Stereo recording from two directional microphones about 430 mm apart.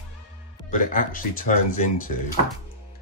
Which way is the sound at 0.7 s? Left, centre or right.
Centre.